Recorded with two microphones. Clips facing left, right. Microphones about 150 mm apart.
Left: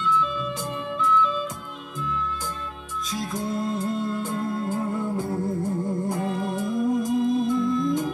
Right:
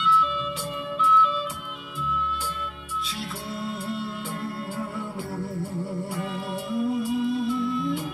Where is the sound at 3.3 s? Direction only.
40° left (ahead or behind).